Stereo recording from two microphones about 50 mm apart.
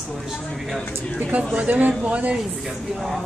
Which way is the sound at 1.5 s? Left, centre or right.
Right.